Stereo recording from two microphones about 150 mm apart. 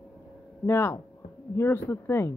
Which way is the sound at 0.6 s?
20° left (ahead or behind).